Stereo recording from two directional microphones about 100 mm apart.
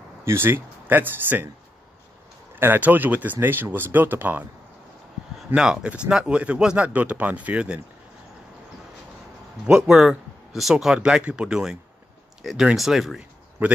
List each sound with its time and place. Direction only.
0.2 s speech: 25° right (ahead or behind)
2.5 s speech: 20° right (ahead or behind)
5.5 s speech: 10° right (ahead or behind)
9.7 s speech: 5° right (ahead or behind)
13.6 s speech: 15° right (ahead or behind)